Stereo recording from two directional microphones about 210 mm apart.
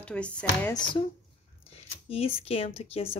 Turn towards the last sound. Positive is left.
turn(degrees=25)  # may be behind; listen again after turning